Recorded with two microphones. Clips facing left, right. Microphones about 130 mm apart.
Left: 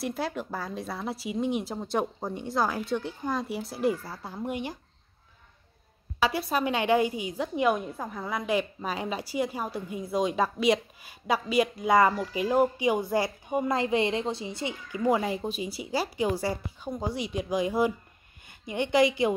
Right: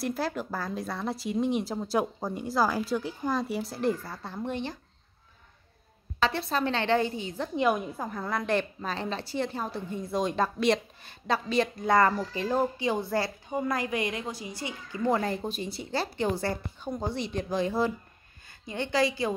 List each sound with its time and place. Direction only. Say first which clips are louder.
0.0 s speech: right 1 dB; centre (ahead or behind)
6.1 s a woman's voice: left 1 dB; 10° left (ahead or behind)
15.0 s a woman's voice: left 1 dB; 10° left (ahead or behind)